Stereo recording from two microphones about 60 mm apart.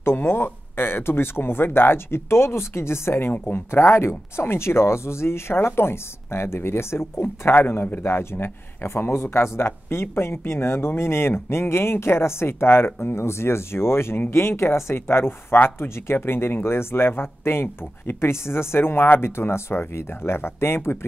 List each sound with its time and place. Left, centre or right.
0.0 s speech: left